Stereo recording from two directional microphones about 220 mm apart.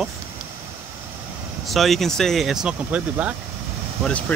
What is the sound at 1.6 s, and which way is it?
Speech, centre (ahead or behind).